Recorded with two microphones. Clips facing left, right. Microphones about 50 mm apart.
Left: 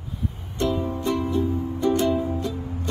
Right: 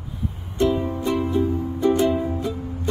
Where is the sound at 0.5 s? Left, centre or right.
Centre.